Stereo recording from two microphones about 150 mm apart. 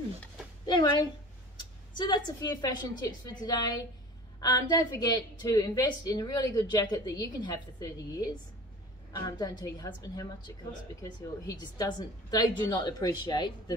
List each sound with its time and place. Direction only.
0.7 s a woman's voice: 30° left (ahead or behind)